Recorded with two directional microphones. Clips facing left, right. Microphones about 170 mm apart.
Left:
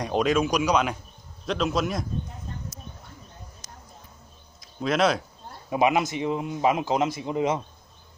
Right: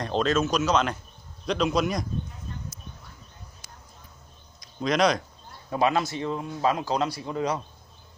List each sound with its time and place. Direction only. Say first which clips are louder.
0.0 s a man's voice: left 1 dB; 10° left (ahead or behind)
3.6 s a sound: left 3 dB; 40° left (ahead or behind)
4.6 s speech: even; 5° left (ahead or behind)
5.7 s a man's voice: left 2 dB; 15° left (ahead or behind)